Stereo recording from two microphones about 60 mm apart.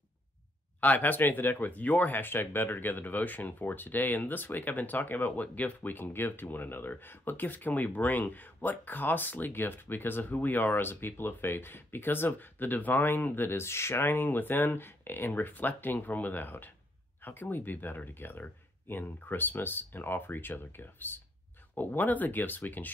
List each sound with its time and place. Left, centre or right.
0.7 s speech: left